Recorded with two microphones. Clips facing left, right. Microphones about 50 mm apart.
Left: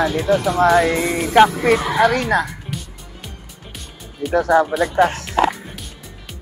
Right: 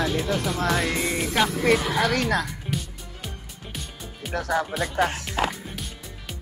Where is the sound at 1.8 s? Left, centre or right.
Left.